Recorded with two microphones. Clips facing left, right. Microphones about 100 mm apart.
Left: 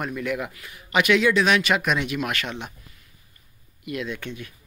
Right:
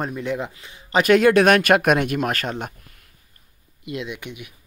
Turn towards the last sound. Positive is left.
turn(degrees=-15)  # may be behind; listen again after turning